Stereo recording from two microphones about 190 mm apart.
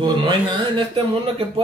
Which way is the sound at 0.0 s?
25° right (ahead or behind).